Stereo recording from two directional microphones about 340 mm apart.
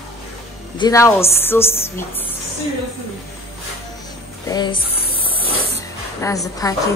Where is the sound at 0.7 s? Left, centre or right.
Centre.